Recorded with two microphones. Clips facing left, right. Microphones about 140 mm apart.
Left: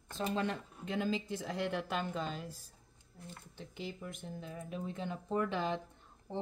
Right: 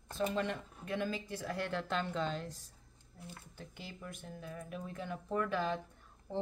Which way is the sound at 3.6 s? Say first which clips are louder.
Left 6 dB; 20° left (ahead or behind).